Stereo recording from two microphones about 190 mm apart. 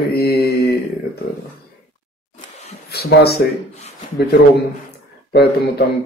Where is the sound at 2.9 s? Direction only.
55° left (ahead or behind).